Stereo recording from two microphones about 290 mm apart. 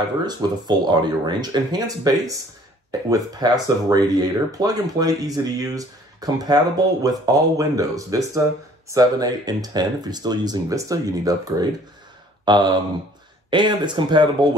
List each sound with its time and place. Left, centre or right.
0.2 s speech: centre
12.4 s a sound: centre
13.5 s speech: centre